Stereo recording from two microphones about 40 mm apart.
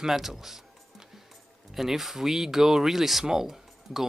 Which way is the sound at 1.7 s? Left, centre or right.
Centre.